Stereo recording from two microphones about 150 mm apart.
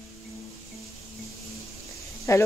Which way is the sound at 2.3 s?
20° left (ahead or behind).